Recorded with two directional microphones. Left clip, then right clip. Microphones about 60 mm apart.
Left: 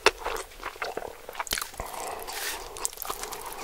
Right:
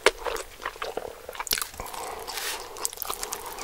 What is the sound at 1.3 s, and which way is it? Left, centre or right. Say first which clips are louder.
Biting: right 2 dB; left.